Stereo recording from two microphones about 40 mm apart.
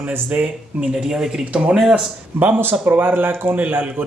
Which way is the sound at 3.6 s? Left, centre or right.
Right.